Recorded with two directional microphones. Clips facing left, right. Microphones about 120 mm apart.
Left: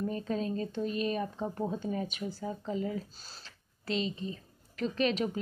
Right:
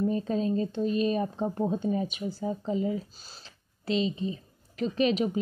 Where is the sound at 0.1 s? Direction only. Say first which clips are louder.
Right 6 dB; 25° right (ahead or behind).